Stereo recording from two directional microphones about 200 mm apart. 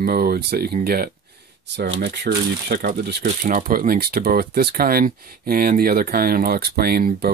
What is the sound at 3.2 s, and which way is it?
Speech, 40° right (ahead or behind).